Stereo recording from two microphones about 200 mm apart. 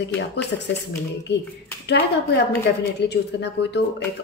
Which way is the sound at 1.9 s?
60° left (ahead or behind).